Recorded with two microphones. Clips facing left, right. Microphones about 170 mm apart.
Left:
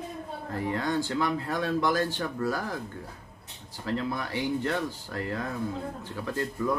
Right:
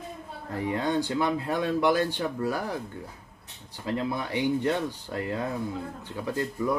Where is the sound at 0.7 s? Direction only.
20° right (ahead or behind).